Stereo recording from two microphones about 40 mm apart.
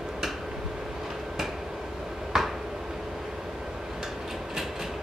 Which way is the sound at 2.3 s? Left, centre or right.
Centre.